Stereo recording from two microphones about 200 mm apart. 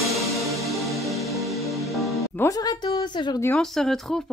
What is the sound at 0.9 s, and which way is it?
Music, centre (ahead or behind).